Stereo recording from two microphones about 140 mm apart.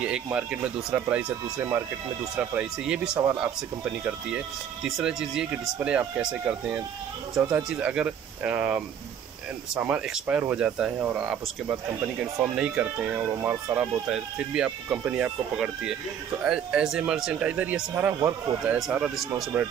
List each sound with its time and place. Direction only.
0.0 s speech: 10° right (ahead or behind)
2.3 s speech: 5° right (ahead or behind)
12.5 s speech: 5° right (ahead or behind)